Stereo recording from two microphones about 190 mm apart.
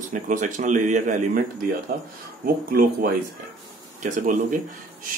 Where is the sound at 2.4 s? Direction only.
50° right (ahead or behind).